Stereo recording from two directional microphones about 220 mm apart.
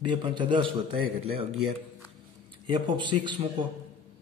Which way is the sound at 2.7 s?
20° right (ahead or behind).